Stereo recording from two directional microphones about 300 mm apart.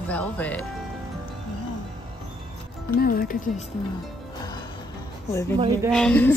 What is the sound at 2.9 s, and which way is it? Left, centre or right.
Speech, left.